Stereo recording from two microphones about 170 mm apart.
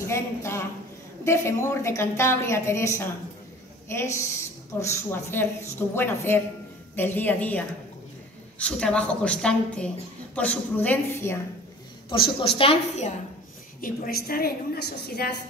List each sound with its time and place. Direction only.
0.0 s a woman's voice: 15° left (ahead or behind)
12.1 s a woman's voice: 30° left (ahead or behind)
13.7 s a woman's voice: 55° left (ahead or behind)